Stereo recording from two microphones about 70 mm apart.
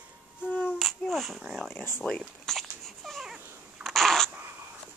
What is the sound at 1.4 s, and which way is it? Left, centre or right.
Speech, centre.